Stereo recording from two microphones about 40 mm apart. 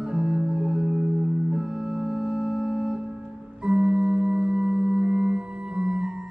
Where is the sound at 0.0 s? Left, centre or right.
Right.